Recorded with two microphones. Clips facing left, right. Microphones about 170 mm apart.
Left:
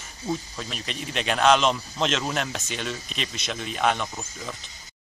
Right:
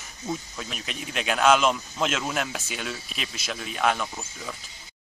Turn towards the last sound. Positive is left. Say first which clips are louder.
# left 1 dB
turn(degrees=-5)  # may be behind; listen again after turning